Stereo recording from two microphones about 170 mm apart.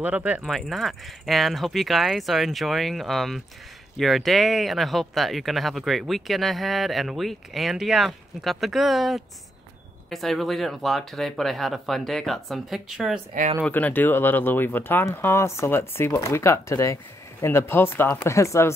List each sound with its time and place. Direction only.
0.0 s speech: 10° right (ahead or behind)
13.3 s speech: 50° right (ahead or behind)
13.7 s speech: 10° left (ahead or behind)